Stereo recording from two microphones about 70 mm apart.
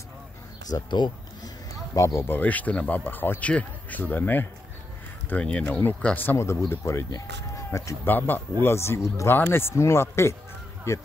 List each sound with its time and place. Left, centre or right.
0.7 s speech: left
2.0 s speech: left
2.2 s speech: left
5.3 s speech: centre
6.3 s a man's voice: left
7.2 s a sound: left
8.0 s a man's voice: left